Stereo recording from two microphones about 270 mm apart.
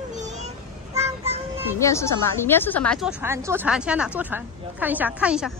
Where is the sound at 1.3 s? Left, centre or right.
Right.